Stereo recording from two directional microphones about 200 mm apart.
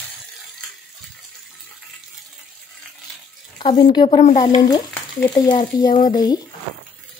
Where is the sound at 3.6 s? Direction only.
25° left (ahead or behind).